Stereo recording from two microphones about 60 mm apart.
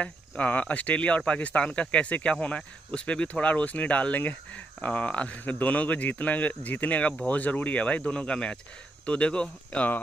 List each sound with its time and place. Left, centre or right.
0.0 s speech: left